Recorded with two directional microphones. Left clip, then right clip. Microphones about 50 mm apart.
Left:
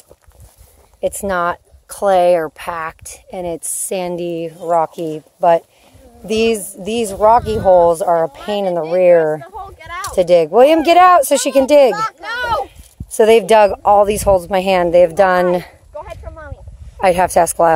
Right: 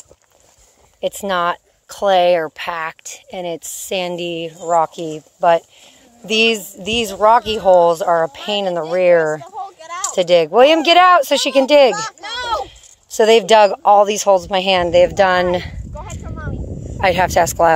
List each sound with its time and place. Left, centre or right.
1.0 s speech: left
1.9 s speech: left
4.6 s speech: left
6.2 s speech: left
6.9 s speech: left
7.2 s speech: centre
7.8 s speech: left
10.1 s speech: left
11.9 s speech: centre
13.2 s speech: left
14.0 s speech: left
14.3 s speech: left
17.0 s speech: left